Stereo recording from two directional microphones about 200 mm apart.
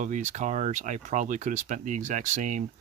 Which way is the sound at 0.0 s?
40° right (ahead or behind).